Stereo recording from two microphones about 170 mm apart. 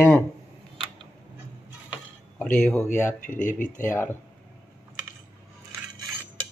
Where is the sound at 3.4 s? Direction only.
50° left (ahead or behind).